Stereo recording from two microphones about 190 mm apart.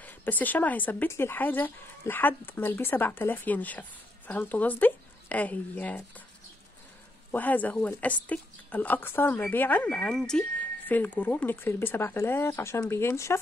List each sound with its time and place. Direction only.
0.0 s speech: 10° left (ahead or behind)
7.2 s speech: 10° left (ahead or behind)